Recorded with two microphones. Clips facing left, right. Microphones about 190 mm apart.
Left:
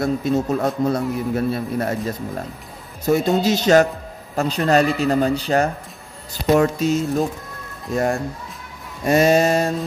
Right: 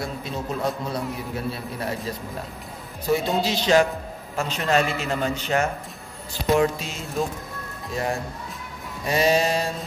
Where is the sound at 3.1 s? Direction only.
45° left (ahead or behind).